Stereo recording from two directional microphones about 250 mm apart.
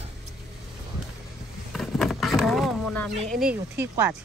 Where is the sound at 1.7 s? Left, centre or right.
Centre.